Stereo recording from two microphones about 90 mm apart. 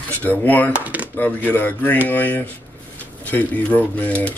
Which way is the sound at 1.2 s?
20° left (ahead or behind).